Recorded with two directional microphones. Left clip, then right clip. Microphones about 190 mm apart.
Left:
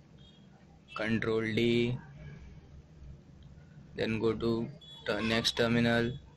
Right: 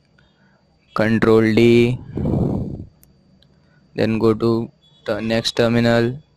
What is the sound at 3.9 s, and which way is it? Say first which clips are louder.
Speech: right 14 dB; 55° right (ahead or behind).